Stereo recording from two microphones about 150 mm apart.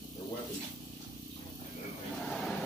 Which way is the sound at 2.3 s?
5° left (ahead or behind).